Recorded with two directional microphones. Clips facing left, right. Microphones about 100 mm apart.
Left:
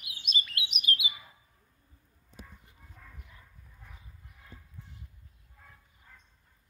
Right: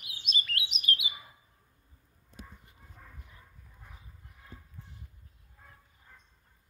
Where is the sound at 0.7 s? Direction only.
30° right (ahead or behind).